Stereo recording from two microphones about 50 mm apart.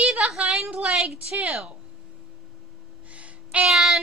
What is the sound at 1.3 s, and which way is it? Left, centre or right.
Speech, right.